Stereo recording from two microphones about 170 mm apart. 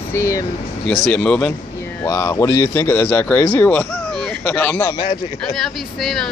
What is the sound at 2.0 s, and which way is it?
Speech, 20° left (ahead or behind).